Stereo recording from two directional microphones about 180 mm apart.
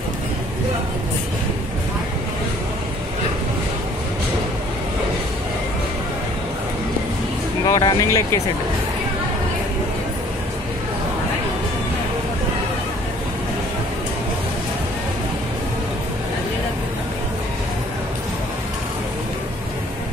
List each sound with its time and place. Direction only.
7.6 s vehicle: 20° left (ahead or behind)